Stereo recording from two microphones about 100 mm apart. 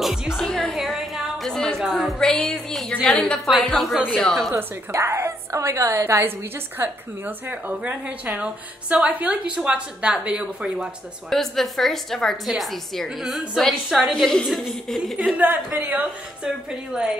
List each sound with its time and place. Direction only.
0.0 s music: 5° right (ahead or behind)
3.1 s a woman's voice: 10° left (ahead or behind)
3.4 s a woman's voice: centre (ahead or behind)
4.9 s a woman's voice: 30° right (ahead or behind); by 10.9 s 10° right (ahead or behind)
11.2 s a woman's voice: centre (ahead or behind)
15.1 s a woman's voice: 15° right (ahead or behind)